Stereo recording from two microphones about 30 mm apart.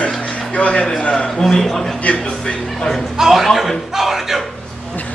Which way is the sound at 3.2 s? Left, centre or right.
Centre.